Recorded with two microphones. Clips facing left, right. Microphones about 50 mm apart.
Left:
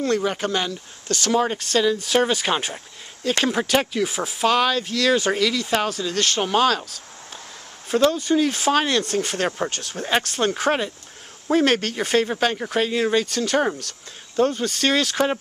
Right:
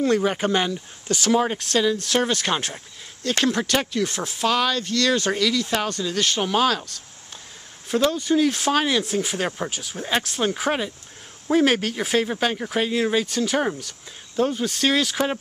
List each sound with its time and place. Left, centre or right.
0.0 s speech: centre